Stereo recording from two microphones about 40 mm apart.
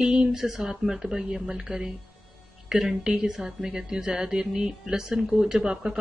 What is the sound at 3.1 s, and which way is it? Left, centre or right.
Speech, centre.